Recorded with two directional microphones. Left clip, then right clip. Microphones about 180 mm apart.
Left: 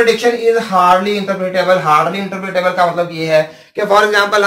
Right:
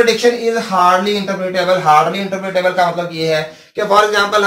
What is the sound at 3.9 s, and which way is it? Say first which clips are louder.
Speech: left 1 dB; 20° left (ahead or behind).